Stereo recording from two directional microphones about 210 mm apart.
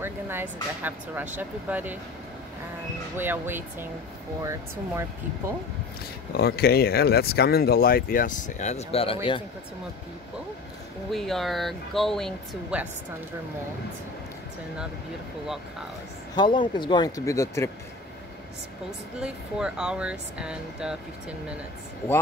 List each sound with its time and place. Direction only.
0.0 s speech: 10° right (ahead or behind)
3.2 s speech: 10° right (ahead or behind)
6.3 s speech: 50° left (ahead or behind); by 9.4 s 25° left (ahead or behind)
11.1 s speech: centre (ahead or behind)
16.3 s speech: 20° left (ahead or behind)
19.1 s speech: 5° right (ahead or behind)